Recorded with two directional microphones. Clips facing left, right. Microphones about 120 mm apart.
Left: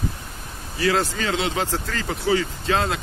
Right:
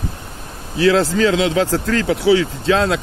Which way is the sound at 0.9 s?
90° right.